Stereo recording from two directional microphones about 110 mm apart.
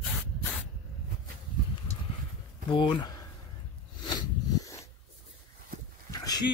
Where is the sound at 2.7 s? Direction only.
50° left (ahead or behind).